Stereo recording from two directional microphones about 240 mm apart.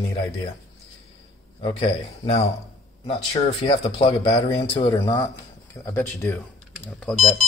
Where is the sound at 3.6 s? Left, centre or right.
Left; by 7.3 s centre.